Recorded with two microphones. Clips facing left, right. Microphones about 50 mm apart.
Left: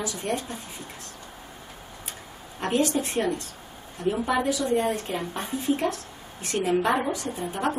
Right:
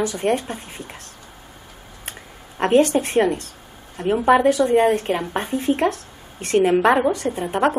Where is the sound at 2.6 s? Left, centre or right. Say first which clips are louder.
Right 8 dB; right.